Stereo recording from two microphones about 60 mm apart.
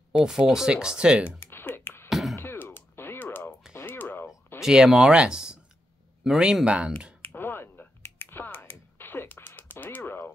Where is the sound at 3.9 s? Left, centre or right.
Left.